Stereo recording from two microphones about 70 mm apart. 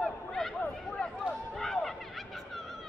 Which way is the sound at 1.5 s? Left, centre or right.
Centre.